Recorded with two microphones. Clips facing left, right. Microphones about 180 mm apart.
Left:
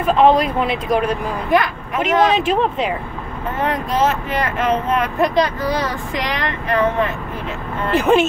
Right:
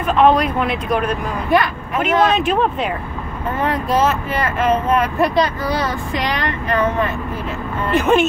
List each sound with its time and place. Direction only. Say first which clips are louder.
0.0 s speech: left 1 dB; 30° left (ahead or behind)
1.5 s speech: right 1 dB; 15° left (ahead or behind)
2.3 s speech: even; 25° left (ahead or behind)
3.6 s speech: right 1 dB; 20° left (ahead or behind)
7.9 s speech: even; 30° left (ahead or behind)